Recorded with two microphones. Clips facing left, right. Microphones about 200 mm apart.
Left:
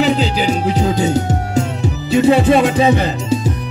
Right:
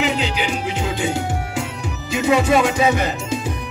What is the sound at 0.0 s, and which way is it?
Music, 35° left (ahead or behind).